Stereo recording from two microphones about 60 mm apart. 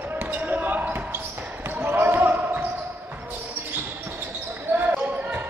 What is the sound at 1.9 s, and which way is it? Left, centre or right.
Basketball bounce, right.